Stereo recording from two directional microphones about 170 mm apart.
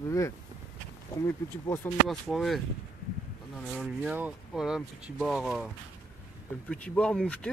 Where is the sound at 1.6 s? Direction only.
15° left (ahead or behind).